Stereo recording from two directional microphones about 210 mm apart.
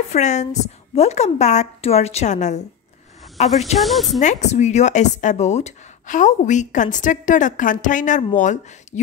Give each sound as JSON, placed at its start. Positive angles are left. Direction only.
{"t": 0.1, "sound": "a woman's voice", "side_deg": 35}
{"t": 3.8, "sound": "speech", "side_deg": 0}
{"t": 4.2, "sound": "a woman's voice", "side_deg": 35}